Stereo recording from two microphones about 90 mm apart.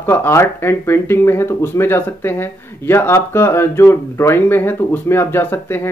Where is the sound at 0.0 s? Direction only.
30° left (ahead or behind).